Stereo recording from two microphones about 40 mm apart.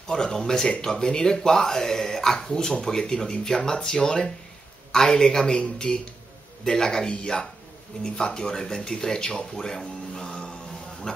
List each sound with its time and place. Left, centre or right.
0.0 s speech: centre